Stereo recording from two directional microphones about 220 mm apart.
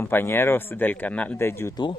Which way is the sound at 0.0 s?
10° left (ahead or behind).